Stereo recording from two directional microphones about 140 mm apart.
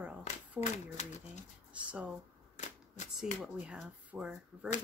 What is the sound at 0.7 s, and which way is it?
Speech, 55° left (ahead or behind).